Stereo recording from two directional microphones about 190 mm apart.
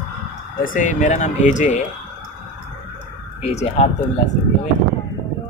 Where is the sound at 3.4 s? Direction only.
35° left (ahead or behind).